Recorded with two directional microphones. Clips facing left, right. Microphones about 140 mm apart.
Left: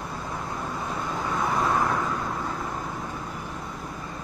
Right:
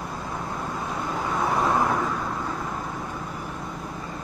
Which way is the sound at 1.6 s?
20° right (ahead or behind).